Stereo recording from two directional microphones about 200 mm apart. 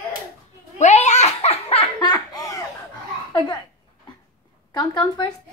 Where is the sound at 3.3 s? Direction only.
20° left (ahead or behind).